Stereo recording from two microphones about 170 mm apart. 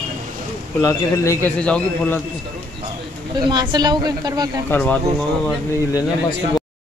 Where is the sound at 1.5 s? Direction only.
5° left (ahead or behind).